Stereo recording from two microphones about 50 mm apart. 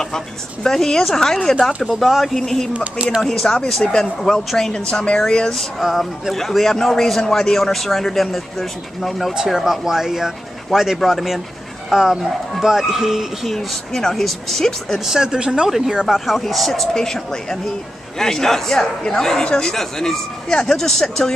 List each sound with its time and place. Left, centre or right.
0.7 s speech: centre
2.7 s speech: right
3.2 s speech: centre
4.7 s a woman's voice: centre
5.2 s speech: centre
9.3 s speech: centre
15.0 s speech: centre
16.3 s speech: centre